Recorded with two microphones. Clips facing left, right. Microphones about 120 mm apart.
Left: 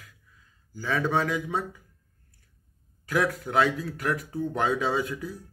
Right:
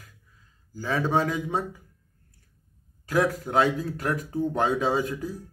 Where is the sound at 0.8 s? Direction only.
15° right (ahead or behind).